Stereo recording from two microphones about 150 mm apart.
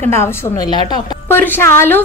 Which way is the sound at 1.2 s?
15° left (ahead or behind).